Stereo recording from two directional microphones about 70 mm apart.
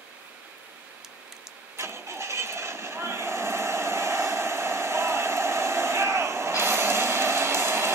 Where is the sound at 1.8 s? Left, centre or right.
Right.